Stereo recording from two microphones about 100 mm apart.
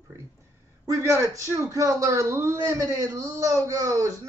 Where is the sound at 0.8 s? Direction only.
35° right (ahead or behind).